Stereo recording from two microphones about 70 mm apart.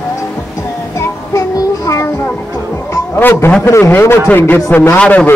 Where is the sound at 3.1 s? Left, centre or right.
Left.